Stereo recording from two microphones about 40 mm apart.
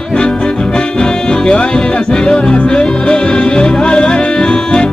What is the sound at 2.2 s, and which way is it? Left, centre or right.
Music, centre.